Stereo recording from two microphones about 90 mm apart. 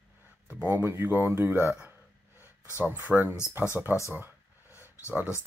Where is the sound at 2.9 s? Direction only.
20° right (ahead or behind).